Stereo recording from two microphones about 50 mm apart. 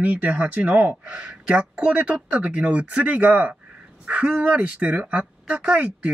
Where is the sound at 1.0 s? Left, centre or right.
Right.